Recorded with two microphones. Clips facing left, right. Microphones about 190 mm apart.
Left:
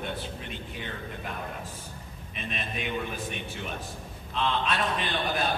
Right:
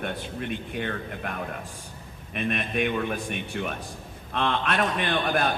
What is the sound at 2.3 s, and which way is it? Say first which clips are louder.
Speech: right 9 dB; 60° right (ahead or behind).